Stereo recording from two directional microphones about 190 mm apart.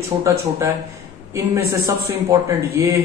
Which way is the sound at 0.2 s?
15° right (ahead or behind).